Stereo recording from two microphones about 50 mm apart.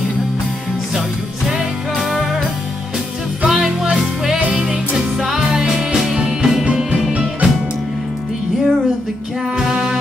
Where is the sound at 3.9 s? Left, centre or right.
Centre.